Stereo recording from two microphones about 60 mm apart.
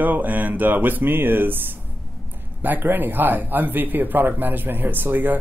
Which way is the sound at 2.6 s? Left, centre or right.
Right.